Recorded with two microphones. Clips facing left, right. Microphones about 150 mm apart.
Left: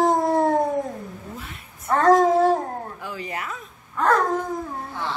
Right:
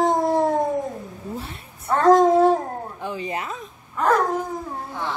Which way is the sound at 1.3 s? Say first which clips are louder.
Right 5 dB; 30° right (ahead or behind).